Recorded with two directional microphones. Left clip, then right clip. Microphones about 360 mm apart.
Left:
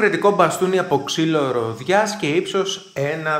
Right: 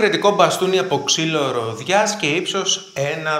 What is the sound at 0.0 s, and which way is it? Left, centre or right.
A man's voice, centre.